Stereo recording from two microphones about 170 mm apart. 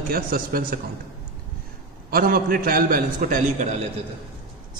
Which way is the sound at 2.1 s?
60° right (ahead or behind).